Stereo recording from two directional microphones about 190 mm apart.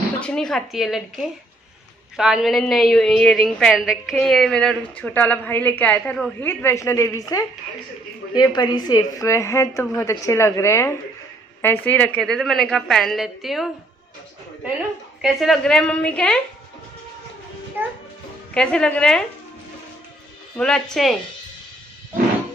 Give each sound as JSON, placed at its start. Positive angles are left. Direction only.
{"t": 0.2, "sound": "a woman's voice", "side_deg": 5}
{"t": 6.6, "sound": "a woman's voice", "side_deg": 15}
{"t": 15.2, "sound": "a woman's voice", "side_deg": 0}
{"t": 17.8, "sound": "a child's voice", "side_deg": -10}
{"t": 18.5, "sound": "a woman's voice", "side_deg": 5}
{"t": 20.5, "sound": "a woman's voice", "side_deg": 5}